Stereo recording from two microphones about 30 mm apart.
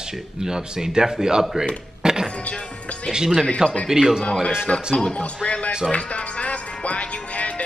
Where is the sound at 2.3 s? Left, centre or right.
Left.